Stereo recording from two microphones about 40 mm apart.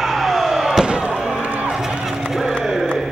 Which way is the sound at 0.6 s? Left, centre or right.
Centre.